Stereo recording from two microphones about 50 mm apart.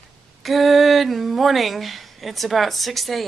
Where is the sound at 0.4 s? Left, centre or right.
Centre.